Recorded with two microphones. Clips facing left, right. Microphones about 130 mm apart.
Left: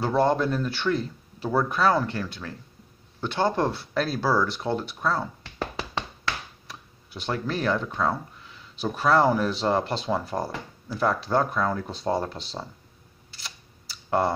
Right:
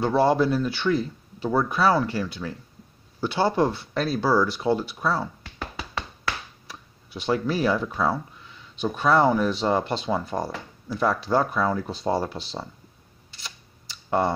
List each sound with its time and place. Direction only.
0.0 s speech: 5° right (ahead or behind)
5.6 s a sound: 30° left (ahead or behind)
6.7 s speech: centre (ahead or behind)
13.3 s camera: centre (ahead or behind)